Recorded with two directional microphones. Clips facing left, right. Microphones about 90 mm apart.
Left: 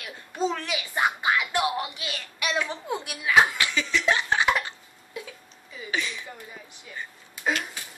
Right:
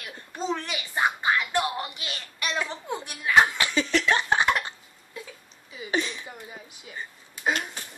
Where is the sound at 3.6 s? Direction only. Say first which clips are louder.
Right 2 dB; 35° right (ahead or behind).